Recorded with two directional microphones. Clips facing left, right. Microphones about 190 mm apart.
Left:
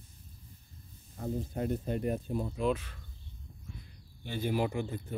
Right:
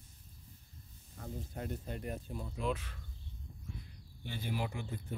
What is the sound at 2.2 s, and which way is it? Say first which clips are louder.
Speech: left 7 dB; 60° left (ahead or behind).